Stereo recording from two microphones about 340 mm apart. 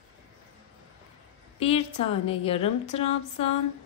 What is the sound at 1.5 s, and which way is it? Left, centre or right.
A woman's voice, centre.